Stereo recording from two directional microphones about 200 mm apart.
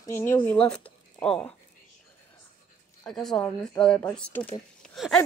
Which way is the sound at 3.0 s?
Centre (ahead or behind).